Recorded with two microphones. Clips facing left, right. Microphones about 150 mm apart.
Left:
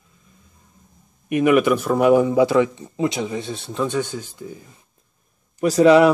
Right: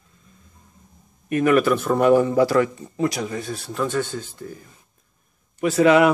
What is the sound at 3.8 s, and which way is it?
Speech, 15° left (ahead or behind).